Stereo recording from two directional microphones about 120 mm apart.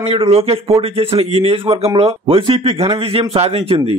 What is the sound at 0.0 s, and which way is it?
Speech, 50° right (ahead or behind).